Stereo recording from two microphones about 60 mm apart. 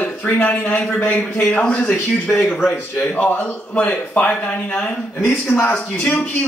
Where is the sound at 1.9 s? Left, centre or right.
Centre.